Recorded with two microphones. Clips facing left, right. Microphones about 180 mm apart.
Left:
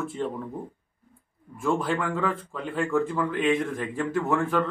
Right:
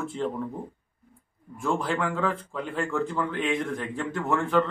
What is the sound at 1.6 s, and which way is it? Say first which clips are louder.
Speech: left 1 dB; centre (ahead or behind).